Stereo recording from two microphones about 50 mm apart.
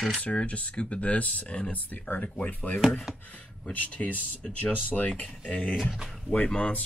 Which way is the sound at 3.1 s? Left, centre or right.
Centre.